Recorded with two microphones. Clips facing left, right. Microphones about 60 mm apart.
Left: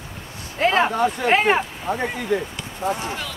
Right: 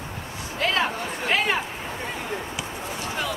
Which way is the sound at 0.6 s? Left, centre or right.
Left.